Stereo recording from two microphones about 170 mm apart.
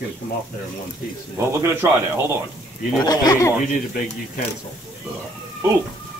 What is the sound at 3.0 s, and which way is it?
Speech, 20° left (ahead or behind).